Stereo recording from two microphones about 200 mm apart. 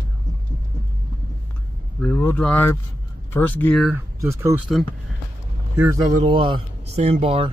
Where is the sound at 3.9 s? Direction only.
15° right (ahead or behind).